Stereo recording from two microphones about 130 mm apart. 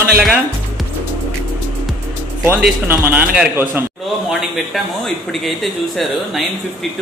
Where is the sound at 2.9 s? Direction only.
15° right (ahead or behind).